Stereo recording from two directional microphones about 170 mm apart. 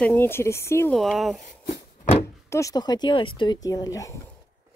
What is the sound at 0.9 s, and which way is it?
Speech, centre (ahead or behind).